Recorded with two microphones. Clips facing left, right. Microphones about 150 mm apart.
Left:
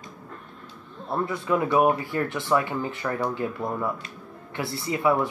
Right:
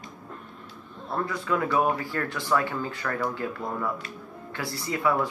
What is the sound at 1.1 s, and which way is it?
Speech, 20° left (ahead or behind).